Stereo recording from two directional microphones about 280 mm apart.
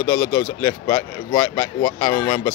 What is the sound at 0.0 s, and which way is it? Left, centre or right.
Speech, centre.